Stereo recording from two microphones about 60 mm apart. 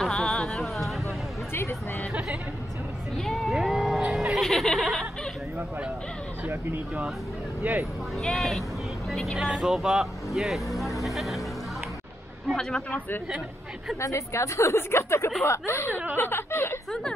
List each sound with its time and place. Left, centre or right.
0.0 s music: centre
1.5 s a sound: left
3.2 s music: centre
4.4 s snicker: centre
6.4 s a sound: right
7.7 s speech: right
8.2 s speech: centre
9.4 s speech: centre
11.0 s music: centre
14.0 s a woman's voice: left